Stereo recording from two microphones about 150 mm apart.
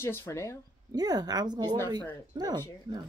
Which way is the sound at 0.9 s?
25° right (ahead or behind).